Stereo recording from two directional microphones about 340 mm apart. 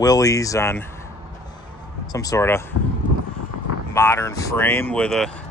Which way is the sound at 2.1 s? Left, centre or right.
Centre.